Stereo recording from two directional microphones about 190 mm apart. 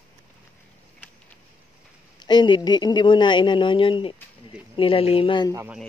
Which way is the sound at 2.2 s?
25° left (ahead or behind).